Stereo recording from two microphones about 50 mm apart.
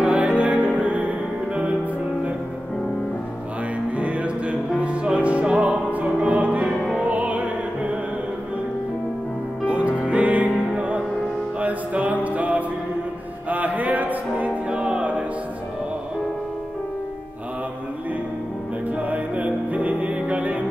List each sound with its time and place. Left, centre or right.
0.0 s music: right
3.9 s music: right
5.9 s music: right
9.7 s music: right
18.9 s music: right